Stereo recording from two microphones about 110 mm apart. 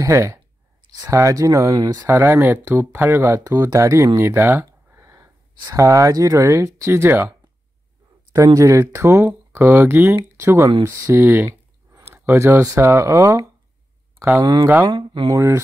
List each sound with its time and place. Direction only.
0.0 s speech: 25° right (ahead or behind)
2.0 s speech: 20° right (ahead or behind)
8.5 s speech: 25° right (ahead or behind)
14.4 s speech: 35° right (ahead or behind)
15.3 s speech: 25° right (ahead or behind)